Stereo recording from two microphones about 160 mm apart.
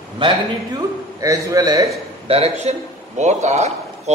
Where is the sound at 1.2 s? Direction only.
20° right (ahead or behind).